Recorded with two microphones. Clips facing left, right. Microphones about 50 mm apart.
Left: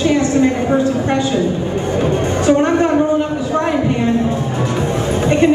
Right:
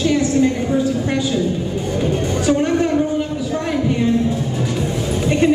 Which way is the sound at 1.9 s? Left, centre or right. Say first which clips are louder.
Left 3 dB; left.